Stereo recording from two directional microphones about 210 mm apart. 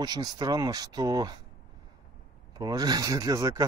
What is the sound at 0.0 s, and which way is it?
Speech, 20° right (ahead or behind).